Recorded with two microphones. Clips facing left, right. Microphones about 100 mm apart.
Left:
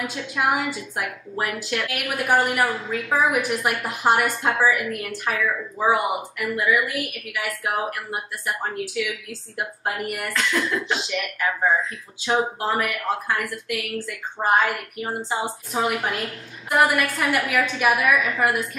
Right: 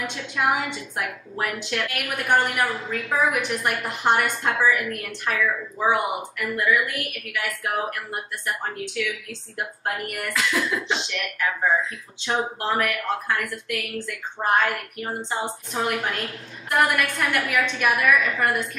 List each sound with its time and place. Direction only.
0.0 s a woman's voice: 5° left (ahead or behind)